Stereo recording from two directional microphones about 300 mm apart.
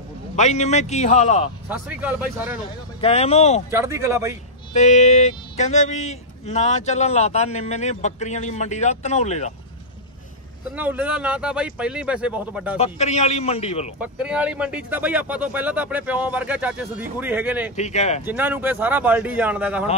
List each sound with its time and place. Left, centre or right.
0.4 s speech: left
1.7 s speech: centre
3.0 s speech: left
3.7 s speech: centre
4.7 s speech: left
10.7 s speech: centre
12.7 s speech: left
13.9 s speech: centre
17.7 s speech: left
18.2 s speech: centre